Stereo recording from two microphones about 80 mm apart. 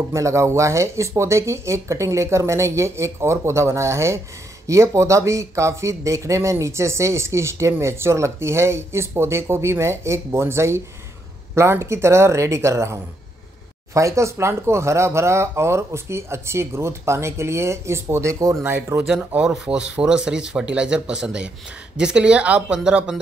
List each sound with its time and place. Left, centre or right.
0.1 s speech: right
18.9 s speech: centre